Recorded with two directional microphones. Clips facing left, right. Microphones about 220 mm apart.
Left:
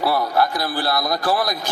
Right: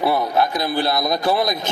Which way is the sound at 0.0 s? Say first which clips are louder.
Right 1 dB; 20° right (ahead or behind).